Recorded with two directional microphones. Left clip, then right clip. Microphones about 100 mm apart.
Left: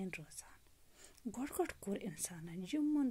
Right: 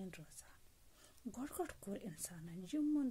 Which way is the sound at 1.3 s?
15° left (ahead or behind).